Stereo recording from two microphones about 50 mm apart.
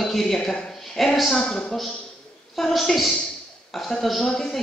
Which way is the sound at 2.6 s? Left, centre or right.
Centre.